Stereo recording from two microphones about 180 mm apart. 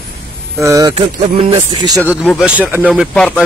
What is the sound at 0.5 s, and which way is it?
Speech, 15° right (ahead or behind).